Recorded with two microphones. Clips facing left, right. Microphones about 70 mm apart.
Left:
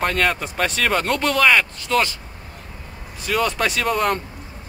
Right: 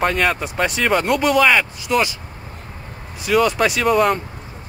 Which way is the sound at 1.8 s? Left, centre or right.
Centre.